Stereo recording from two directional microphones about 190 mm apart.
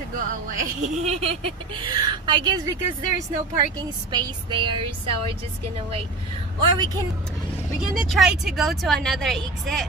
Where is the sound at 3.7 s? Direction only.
20° right (ahead or behind).